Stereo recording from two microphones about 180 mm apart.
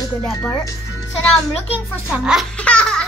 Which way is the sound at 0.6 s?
20° left (ahead or behind).